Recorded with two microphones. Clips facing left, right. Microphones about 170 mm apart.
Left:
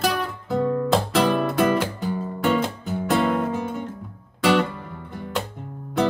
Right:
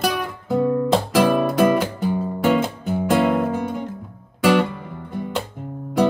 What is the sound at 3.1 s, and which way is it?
Music, 5° right (ahead or behind).